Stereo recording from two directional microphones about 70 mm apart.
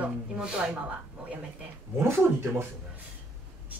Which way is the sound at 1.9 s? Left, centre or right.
Right.